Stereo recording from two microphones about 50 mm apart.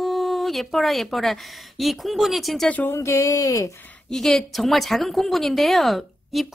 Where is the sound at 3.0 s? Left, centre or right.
Left.